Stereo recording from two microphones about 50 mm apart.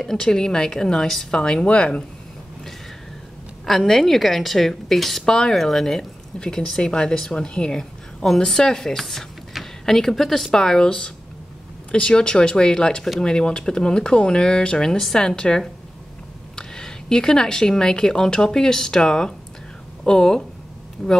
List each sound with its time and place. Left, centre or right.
0.0 s a woman's voice: centre
3.6 s a woman's voice: centre